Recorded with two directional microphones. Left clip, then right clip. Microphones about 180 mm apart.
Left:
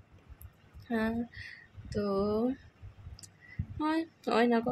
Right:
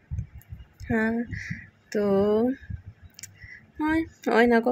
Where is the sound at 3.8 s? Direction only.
15° right (ahead or behind).